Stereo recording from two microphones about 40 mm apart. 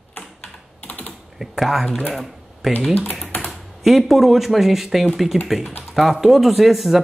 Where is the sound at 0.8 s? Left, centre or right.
Left.